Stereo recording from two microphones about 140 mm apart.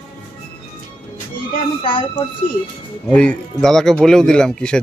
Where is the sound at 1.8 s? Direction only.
35° left (ahead or behind).